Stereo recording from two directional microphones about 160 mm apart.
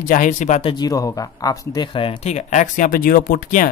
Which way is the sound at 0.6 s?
25° left (ahead or behind).